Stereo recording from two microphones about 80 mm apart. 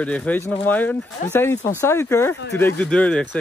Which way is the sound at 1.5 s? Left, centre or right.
Left.